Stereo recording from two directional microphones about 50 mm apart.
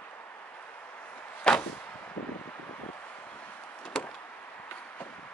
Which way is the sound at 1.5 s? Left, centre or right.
Centre.